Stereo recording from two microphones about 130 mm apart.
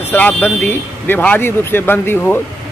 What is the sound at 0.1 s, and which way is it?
Speech, 15° left (ahead or behind).